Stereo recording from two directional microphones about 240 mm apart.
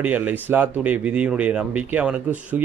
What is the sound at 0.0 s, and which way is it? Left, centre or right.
Speech, centre.